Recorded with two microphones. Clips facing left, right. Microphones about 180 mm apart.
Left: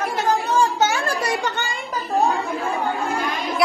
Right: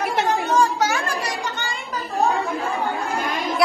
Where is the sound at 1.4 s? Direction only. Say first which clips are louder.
Left 3 dB; 65° left (ahead or behind).